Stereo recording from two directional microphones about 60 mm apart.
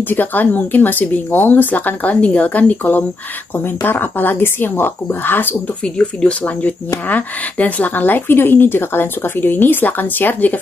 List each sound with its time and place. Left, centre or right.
0.1 s speech: left
5.9 s speech: left